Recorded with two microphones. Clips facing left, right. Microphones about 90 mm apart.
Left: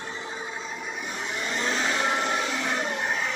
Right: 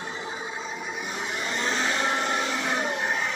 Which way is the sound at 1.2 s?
5° right (ahead or behind).